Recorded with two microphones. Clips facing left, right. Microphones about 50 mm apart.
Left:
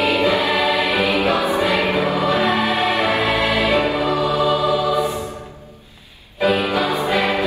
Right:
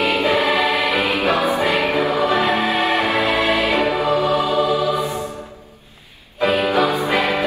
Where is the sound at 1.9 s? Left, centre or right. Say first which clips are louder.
Right 1 dB; right.